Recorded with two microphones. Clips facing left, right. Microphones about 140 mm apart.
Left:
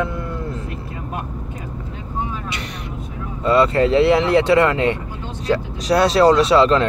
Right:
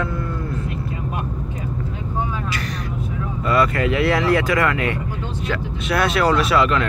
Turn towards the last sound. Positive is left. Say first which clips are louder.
# left 4 dB
turn(degrees=30)  # may be behind; listen again after turning